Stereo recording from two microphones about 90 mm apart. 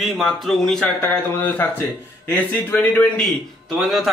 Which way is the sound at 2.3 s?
20° left (ahead or behind).